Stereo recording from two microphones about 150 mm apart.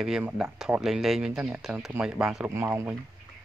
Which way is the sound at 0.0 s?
5° right (ahead or behind).